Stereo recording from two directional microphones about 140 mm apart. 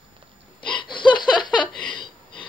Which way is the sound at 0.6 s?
35° left (ahead or behind).